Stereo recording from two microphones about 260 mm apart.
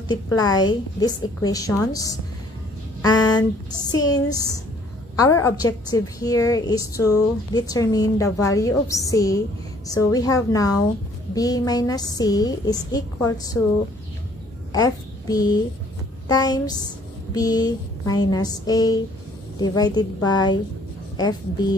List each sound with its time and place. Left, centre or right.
0.1 s a woman's voice: centre
3.0 s a sound: centre
4.0 s a woman's voice: centre
14.7 s a child's voice: centre